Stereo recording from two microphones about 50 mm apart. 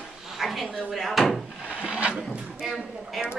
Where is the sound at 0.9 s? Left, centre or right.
Centre.